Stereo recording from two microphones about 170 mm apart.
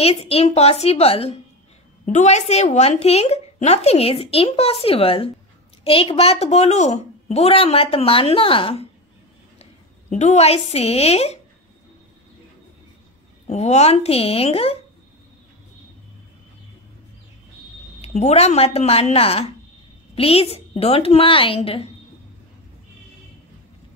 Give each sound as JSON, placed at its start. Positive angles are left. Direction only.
{"t": 0.0, "sound": "a woman's voice", "side_deg": 35}
{"t": 9.6, "sound": "a woman's voice", "side_deg": 45}
{"t": 13.5, "sound": "a woman's voice", "side_deg": 40}
{"t": 18.0, "sound": "a woman's voice", "side_deg": 40}